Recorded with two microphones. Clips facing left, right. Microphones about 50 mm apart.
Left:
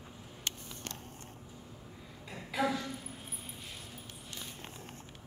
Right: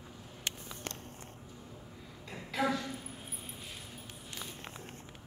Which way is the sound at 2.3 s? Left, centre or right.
Centre.